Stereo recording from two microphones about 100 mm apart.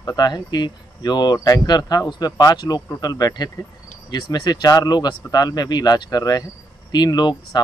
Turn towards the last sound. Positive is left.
turn(degrees=45)  # may be behind; listen again after turning